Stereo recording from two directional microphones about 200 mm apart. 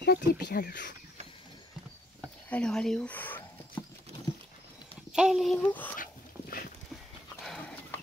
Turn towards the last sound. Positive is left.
turn(degrees=5)  # may be behind; listen again after turning